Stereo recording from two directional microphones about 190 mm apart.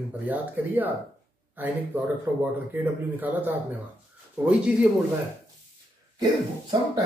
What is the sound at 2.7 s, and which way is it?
Speech, 10° right (ahead or behind).